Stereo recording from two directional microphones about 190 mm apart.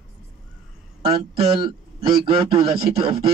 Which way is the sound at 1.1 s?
30° right (ahead or behind).